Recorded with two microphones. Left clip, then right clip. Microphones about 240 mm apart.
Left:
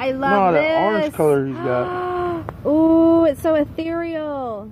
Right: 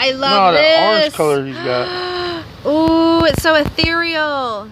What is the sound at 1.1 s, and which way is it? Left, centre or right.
Speech, right.